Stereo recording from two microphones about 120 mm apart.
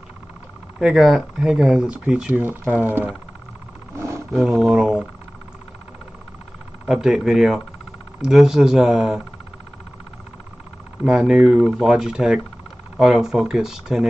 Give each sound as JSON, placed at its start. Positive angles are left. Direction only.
{"t": 0.7, "sound": "speech", "side_deg": -5}
{"t": 2.4, "sound": "speech", "side_deg": -15}
{"t": 4.5, "sound": "speech", "side_deg": -5}
{"t": 6.9, "sound": "speech", "side_deg": -5}
{"t": 11.1, "sound": "speech", "side_deg": -5}